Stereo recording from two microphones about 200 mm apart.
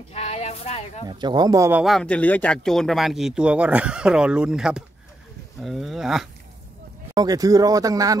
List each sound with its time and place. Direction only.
0.1 s speech: 30° left (ahead or behind)
1.0 s speech: 20° right (ahead or behind); by 6.2 s centre (ahead or behind)
7.2 s speech: 20° right (ahead or behind)